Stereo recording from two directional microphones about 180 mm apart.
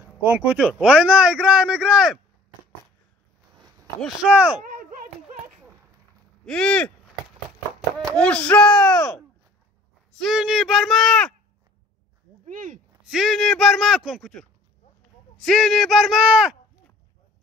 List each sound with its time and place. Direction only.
0.0 s speech: 10° right (ahead or behind)
4.0 s speech: 5° right (ahead or behind)
6.4 s speech: 5° left (ahead or behind)
8.0 s speech: 5° left (ahead or behind)
12.5 s speech: 45° right (ahead or behind)
13.1 s a man's voice: centre (ahead or behind)